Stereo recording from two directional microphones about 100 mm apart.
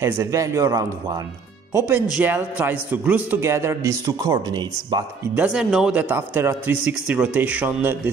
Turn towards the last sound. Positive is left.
turn(degrees=-20)  # may be behind; listen again after turning